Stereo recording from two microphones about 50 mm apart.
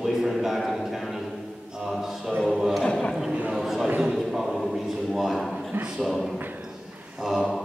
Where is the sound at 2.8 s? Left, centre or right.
Centre.